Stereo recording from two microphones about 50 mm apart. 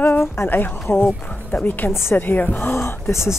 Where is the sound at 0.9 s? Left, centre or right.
Left.